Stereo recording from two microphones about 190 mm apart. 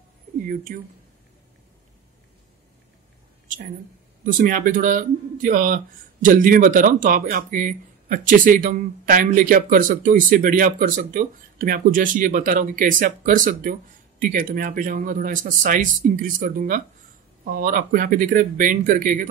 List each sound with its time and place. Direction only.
0.7 s speech: 45° right (ahead or behind)
3.4 s a sound: 45° right (ahead or behind)
4.2 s speech: 45° right (ahead or behind)